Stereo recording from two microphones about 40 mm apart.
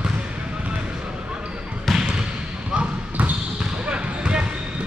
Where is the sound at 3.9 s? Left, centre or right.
Right.